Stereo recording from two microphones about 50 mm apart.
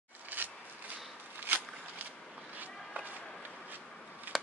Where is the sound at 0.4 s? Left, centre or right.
Right.